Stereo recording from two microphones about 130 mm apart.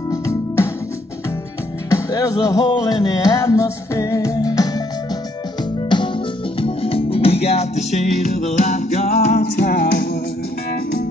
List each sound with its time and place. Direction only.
0.1 s music: 25° left (ahead or behind)
1.9 s music: 25° left (ahead or behind)
5.9 s music: 40° left (ahead or behind); by 10.0 s 90° left